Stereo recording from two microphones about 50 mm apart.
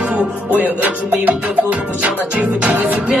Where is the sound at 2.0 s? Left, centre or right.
Right.